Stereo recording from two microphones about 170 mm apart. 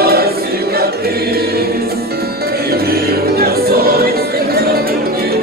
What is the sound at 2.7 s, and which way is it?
Music, 65° right (ahead or behind).